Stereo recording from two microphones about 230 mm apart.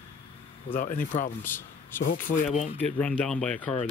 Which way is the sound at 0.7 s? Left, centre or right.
Left.